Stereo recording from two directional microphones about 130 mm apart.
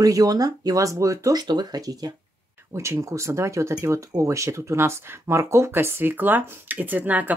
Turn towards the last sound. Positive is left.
turn(degrees=-10)  # may be behind; listen again after turning